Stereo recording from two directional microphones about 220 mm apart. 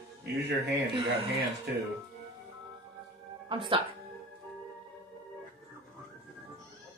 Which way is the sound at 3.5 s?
25° right (ahead or behind).